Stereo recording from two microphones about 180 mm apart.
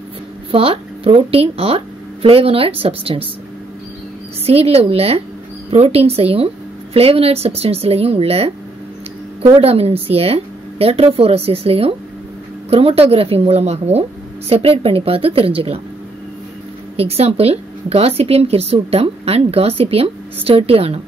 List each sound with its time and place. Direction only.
0.5 s speech: 30° right (ahead or behind)
4.5 s speech: 35° right (ahead or behind)
16.9 s speech: 35° right (ahead or behind)